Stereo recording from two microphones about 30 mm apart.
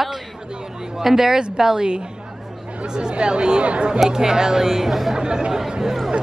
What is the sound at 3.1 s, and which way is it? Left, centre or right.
Speech, right.